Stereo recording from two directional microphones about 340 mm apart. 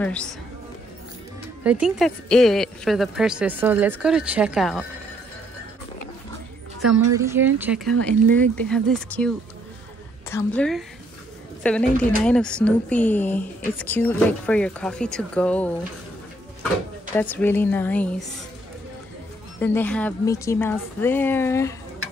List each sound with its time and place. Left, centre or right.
1.6 s speech: centre
6.8 s speech: centre
10.3 s speech: centre
17.1 s speech: centre
19.6 s speech: centre